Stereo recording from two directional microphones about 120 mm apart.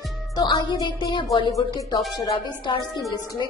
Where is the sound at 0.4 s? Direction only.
35° left (ahead or behind).